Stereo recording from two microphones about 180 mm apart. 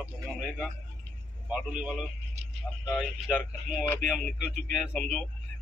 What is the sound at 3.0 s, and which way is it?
Speech, 10° left (ahead or behind).